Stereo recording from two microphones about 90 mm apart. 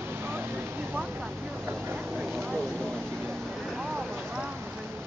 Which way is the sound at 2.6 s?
Centre (ahead or behind).